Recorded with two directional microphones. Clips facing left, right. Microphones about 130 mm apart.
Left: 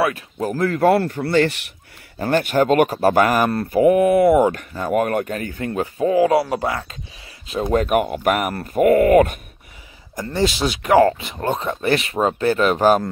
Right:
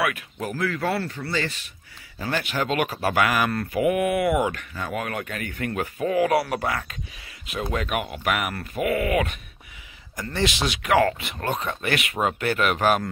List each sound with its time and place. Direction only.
0.0 s speech: 35° left (ahead or behind); by 1.7 s 65° left (ahead or behind)
2.1 s speech: 50° left (ahead or behind); by 7.0 s 25° left (ahead or behind)
7.7 s speech: 45° left (ahead or behind)
10.1 s speech: 30° left (ahead or behind)